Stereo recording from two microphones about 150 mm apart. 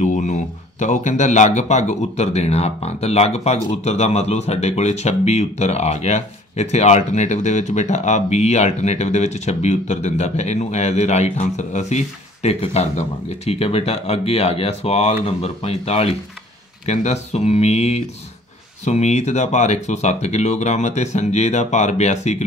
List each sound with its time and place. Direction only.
0.0 s speech: 55° left (ahead or behind)